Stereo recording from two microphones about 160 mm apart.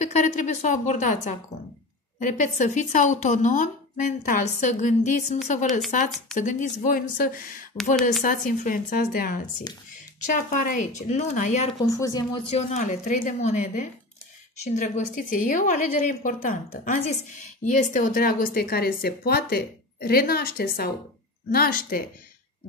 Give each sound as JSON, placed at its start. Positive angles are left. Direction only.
{"t": 0.0, "sound": "a woman's voice", "side_deg": 50}
{"t": 11.8, "sound": "speech", "side_deg": 20}
{"t": 12.4, "sound": "a woman's voice", "side_deg": 45}